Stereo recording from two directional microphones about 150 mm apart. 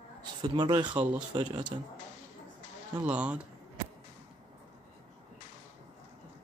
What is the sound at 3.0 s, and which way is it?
Speech, 10° right (ahead or behind).